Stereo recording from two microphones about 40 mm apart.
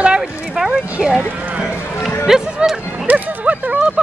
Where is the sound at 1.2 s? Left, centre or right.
Right.